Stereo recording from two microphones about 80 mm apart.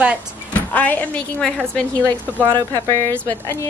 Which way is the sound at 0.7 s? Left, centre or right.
Left.